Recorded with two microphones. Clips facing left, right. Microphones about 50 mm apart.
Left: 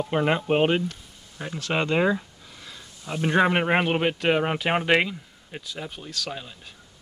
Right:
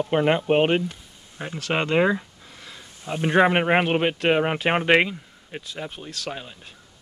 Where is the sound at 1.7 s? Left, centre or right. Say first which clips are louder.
Right 2 dB; centre.